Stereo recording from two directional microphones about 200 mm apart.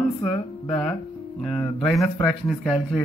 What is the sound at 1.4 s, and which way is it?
Speech, centre (ahead or behind).